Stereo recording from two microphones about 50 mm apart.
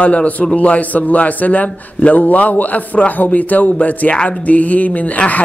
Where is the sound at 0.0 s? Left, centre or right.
Left.